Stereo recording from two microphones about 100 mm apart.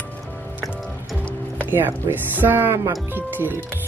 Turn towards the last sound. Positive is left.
turn(degrees=-20)  # may be behind; listen again after turning